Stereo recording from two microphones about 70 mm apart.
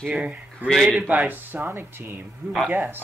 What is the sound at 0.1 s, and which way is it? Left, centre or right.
A man's voice, centre.